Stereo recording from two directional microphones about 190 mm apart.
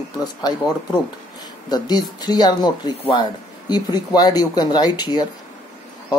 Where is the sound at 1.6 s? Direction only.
20° left (ahead or behind).